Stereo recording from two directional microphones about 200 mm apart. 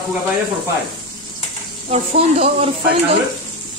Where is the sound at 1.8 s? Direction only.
30° right (ahead or behind).